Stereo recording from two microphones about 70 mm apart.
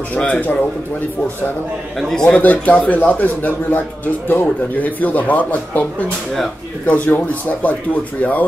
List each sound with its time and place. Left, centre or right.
0.3 s a man's voice: left
2.0 s a man's voice: centre
2.2 s a man's voice: left